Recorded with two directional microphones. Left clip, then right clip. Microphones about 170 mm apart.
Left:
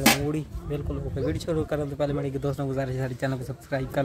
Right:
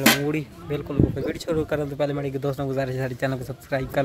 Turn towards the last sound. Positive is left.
turn(degrees=-15)  # may be behind; listen again after turning